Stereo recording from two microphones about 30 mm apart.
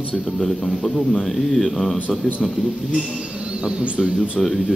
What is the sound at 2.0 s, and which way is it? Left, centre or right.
Speech, left.